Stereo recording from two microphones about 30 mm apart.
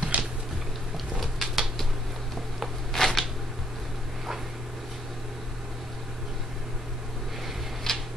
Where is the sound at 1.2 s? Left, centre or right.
Centre.